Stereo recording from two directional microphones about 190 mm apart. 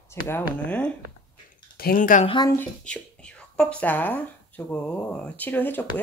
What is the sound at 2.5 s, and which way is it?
Speech, 5° left (ahead or behind).